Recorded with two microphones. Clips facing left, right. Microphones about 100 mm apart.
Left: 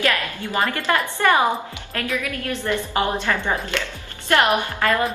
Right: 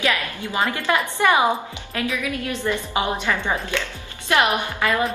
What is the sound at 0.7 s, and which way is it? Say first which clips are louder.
A woman's voice: even; 15° right (ahead or behind).